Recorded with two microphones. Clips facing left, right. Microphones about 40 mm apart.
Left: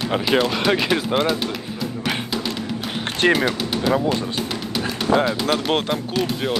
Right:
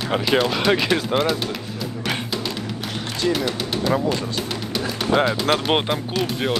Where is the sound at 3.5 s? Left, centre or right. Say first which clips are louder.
Left 1 dB; centre.